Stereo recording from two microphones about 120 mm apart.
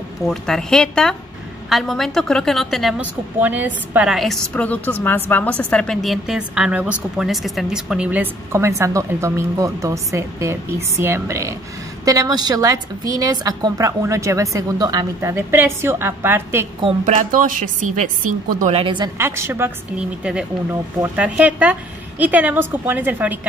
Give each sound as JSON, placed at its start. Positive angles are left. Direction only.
{"t": 0.2, "sound": "a woman's voice", "side_deg": 5}
{"t": 3.0, "sound": "a woman's voice", "side_deg": -15}
{"t": 4.1, "sound": "a woman's voice", "side_deg": 0}
{"t": 4.6, "sound": "a woman's voice", "side_deg": 15}
{"t": 17.0, "sound": "a woman's voice", "side_deg": -90}
{"t": 18.6, "sound": "a woman's voice", "side_deg": -60}
{"t": 19.1, "sound": "a woman's voice", "side_deg": -20}
{"t": 20.0, "sound": "a woman's voice", "side_deg": -5}